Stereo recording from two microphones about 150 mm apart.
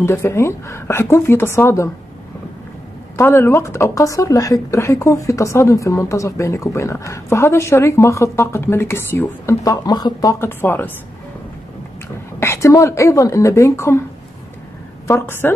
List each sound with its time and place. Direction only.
0.0 s a woman's voice: 15° left (ahead or behind)
3.2 s a woman's voice: 15° left (ahead or behind)
10.6 s a woman's voice: 10° left (ahead or behind)
12.4 s a woman's voice: 20° left (ahead or behind)
15.0 s a woman's voice: 15° left (ahead or behind)